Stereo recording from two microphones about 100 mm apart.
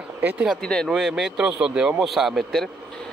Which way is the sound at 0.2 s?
15° right (ahead or behind).